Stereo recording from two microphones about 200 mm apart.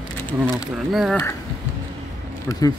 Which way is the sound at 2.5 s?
20° left (ahead or behind).